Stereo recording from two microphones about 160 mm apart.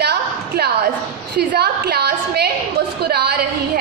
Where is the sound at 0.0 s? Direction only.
90° right.